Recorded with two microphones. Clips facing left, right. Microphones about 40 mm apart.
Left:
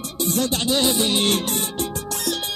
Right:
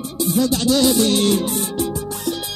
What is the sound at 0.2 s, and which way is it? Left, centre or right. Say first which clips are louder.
Music: right 4 dB; left.